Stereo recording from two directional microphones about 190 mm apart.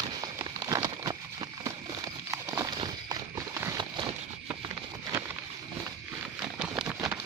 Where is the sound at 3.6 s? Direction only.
20° right (ahead or behind).